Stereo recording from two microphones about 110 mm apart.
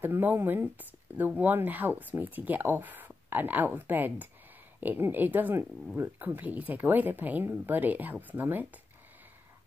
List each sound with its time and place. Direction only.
0.0 s speech: 15° right (ahead or behind)